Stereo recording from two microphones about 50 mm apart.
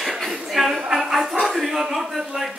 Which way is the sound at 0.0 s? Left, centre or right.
Centre.